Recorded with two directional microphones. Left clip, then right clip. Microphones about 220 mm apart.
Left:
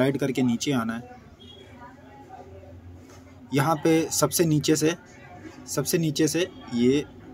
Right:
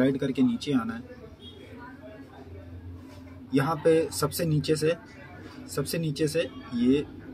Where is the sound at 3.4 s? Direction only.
45° left (ahead or behind).